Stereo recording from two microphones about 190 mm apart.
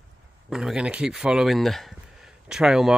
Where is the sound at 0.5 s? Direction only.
5° right (ahead or behind).